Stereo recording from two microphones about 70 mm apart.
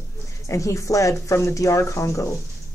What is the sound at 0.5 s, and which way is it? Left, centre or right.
Speech, left.